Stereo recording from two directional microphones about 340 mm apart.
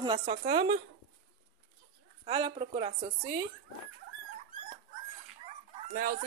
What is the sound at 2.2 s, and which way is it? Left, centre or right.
Speech, centre.